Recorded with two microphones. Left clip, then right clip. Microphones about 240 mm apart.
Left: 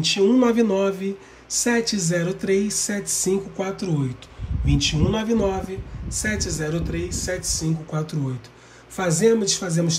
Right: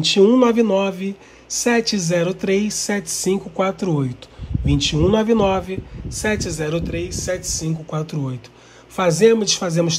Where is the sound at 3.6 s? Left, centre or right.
Centre.